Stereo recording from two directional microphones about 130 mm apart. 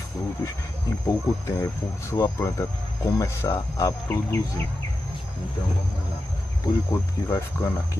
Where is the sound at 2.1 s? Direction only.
20° left (ahead or behind).